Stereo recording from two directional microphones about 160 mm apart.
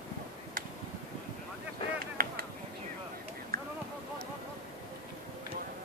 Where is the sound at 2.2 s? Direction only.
65° right (ahead or behind).